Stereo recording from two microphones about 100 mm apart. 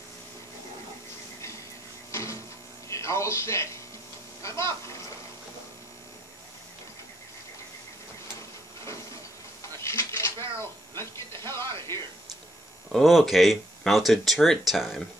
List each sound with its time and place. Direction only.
2.9 s a man's voice: 30° left (ahead or behind)
9.8 s a sound: 25° left (ahead or behind)
11.0 s music: 25° left (ahead or behind)
12.9 s speech: centre (ahead or behind)